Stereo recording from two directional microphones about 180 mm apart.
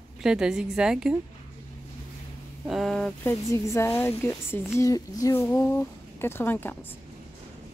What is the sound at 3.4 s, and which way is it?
A woman's voice, 15° left (ahead or behind).